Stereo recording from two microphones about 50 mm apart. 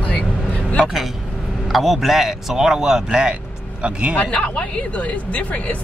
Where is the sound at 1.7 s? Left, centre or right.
Centre.